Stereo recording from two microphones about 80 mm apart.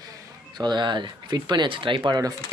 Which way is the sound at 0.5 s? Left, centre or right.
Right.